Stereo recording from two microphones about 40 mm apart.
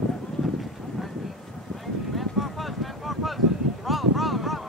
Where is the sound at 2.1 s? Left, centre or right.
Centre.